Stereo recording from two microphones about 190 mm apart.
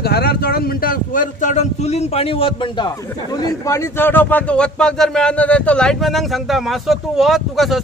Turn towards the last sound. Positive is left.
turn(degrees=0)  # may be behind; listen again after turning